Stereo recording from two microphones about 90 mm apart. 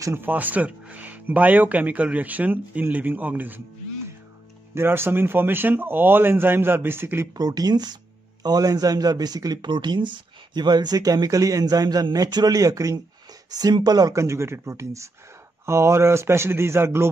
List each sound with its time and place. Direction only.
0.0 s speech: 25° right (ahead or behind)
4.7 s speech: 25° right (ahead or behind)
7.3 s speech: 45° right (ahead or behind)
14.1 s speech: 30° right (ahead or behind)